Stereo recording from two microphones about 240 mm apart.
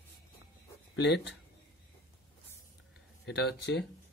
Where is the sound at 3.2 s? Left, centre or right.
Left.